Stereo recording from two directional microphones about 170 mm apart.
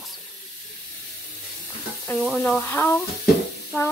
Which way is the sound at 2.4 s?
5° left (ahead or behind).